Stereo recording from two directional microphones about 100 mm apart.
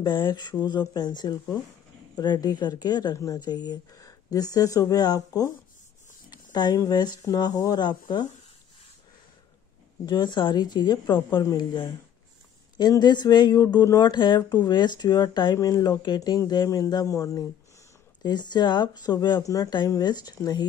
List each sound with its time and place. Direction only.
0.0 s speech: 50° left (ahead or behind)
10.0 s speech: 45° left (ahead or behind)